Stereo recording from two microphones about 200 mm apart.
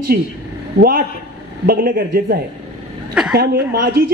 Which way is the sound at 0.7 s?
45° right (ahead or behind).